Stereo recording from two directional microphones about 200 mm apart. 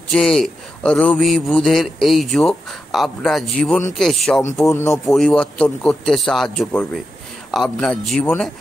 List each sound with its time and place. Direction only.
0.1 s a man's voice: centre (ahead or behind)
4.6 s speech: 15° left (ahead or behind)
5.0 s a man's voice: centre (ahead or behind)